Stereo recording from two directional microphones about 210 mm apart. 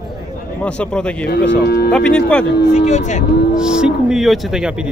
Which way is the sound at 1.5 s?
50° left (ahead or behind).